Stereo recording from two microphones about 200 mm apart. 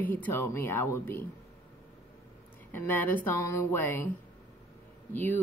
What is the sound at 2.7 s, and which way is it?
Speech, 10° left (ahead or behind).